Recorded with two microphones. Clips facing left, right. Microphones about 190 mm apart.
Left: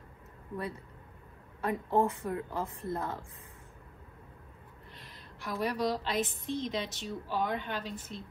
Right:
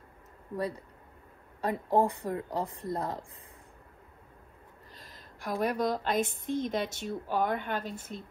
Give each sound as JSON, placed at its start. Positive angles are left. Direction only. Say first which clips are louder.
{"t": 0.6, "sound": "a woman's voice", "louder": "right 5 dB", "side_deg": -35}
{"t": 4.9, "sound": "a sound", "louder": "right 1 dB", "side_deg": -45}
{"t": 5.6, "sound": "a woman's voice", "louder": "right 2 dB", "side_deg": -50}